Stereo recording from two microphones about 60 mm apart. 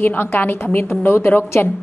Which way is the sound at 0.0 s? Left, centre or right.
Left.